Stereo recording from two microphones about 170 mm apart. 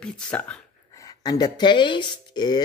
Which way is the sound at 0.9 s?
20° left (ahead or behind).